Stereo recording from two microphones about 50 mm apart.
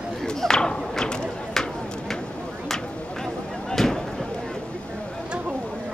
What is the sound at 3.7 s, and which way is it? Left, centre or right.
Fireworks, centre.